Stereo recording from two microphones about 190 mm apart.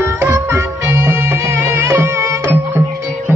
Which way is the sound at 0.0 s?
15° right (ahead or behind).